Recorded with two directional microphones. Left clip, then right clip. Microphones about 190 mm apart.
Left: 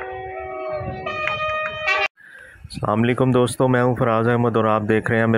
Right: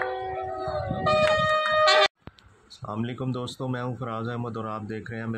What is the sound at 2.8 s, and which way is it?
Speech, 35° left (ahead or behind).